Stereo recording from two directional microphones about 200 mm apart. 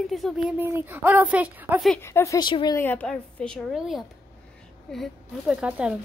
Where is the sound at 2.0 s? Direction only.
15° left (ahead or behind).